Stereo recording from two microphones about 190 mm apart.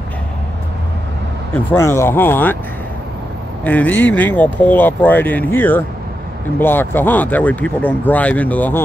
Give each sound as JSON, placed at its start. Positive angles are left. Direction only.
{"t": 1.5, "sound": "speech", "side_deg": 10}
{"t": 3.6, "sound": "speech", "side_deg": 10}